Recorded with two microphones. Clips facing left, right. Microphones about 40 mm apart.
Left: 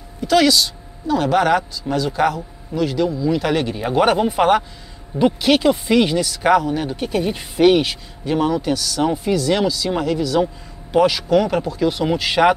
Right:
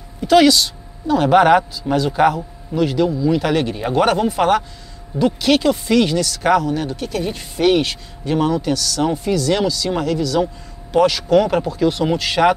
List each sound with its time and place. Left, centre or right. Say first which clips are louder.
0.2 s speech: right 3 dB; centre
1.3 s speech: right 6 dB; centre